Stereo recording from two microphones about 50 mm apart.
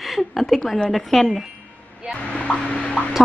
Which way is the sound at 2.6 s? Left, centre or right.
Left.